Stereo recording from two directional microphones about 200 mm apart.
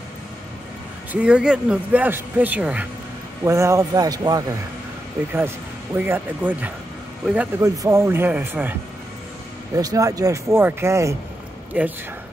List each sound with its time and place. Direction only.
1.1 s speech: 5° right (ahead or behind)
5.9 s speech: 10° right (ahead or behind)
9.8 s speech: 15° right (ahead or behind)